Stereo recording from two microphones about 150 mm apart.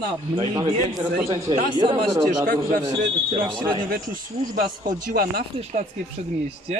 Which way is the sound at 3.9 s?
70° right (ahead or behind).